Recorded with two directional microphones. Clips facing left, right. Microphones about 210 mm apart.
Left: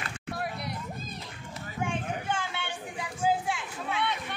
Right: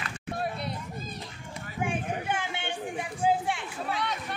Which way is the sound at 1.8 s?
20° right (ahead or behind).